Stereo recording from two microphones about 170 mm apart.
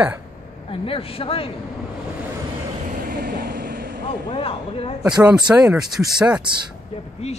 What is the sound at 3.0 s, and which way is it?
Vehicle, 60° right (ahead or behind).